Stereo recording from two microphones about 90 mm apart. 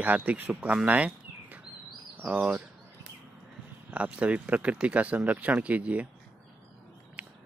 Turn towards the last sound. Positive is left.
turn(degrees=-15)  # may be behind; listen again after turning